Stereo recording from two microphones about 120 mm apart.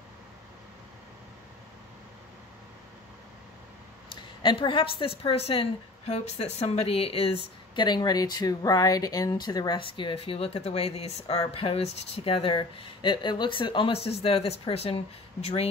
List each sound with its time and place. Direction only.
4.4 s a woman's voice: 45° left (ahead or behind)